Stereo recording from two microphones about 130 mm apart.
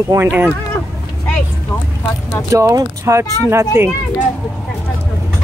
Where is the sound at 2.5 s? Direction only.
25° right (ahead or behind).